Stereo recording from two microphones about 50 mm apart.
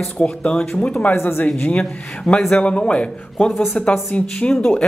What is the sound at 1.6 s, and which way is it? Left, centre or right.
Speech, left.